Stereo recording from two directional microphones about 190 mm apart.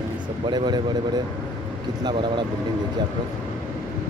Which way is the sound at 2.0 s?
25° right (ahead or behind).